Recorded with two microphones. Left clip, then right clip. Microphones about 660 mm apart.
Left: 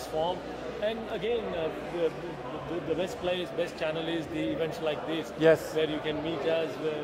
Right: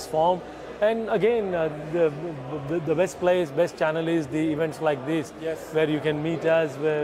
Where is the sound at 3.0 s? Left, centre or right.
Right.